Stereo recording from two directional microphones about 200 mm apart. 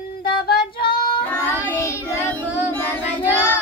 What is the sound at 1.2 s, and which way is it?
Child singing, 15° left (ahead or behind).